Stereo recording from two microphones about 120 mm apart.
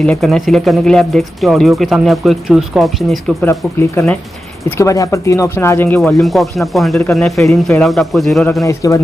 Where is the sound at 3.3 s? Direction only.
25° left (ahead or behind).